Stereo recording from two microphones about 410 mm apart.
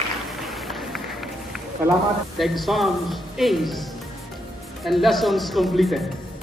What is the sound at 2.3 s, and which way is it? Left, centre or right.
Speech, centre.